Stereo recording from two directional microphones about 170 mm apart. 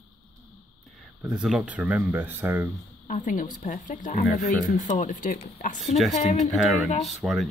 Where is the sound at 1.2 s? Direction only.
5° right (ahead or behind).